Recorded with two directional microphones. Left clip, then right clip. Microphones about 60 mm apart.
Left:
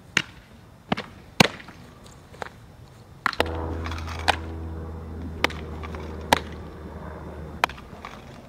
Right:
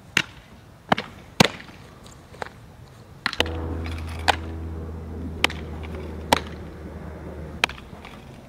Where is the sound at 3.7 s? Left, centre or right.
Left.